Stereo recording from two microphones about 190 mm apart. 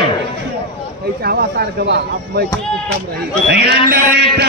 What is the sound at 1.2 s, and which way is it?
A man's voice, 55° right (ahead or behind).